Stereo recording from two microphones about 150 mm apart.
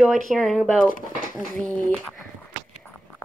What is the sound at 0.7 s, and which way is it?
Speech, 65° left (ahead or behind).